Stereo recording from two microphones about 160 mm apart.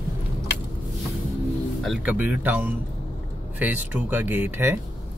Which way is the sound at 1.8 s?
5° right (ahead or behind).